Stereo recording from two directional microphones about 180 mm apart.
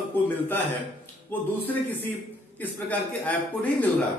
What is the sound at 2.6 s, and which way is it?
A man's voice, 10° left (ahead or behind).